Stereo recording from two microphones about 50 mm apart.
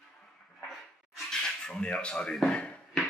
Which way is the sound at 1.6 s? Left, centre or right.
Centre.